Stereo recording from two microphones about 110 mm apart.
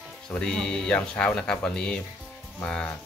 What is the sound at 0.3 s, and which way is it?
Speech, 5° left (ahead or behind).